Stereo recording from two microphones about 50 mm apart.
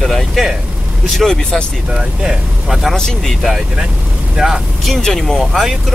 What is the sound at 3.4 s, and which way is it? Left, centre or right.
Speech, centre.